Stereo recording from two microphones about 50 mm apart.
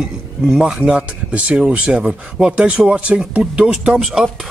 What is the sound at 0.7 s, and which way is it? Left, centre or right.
Speech, right.